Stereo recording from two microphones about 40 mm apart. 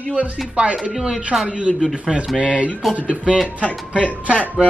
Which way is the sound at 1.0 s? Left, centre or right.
Centre.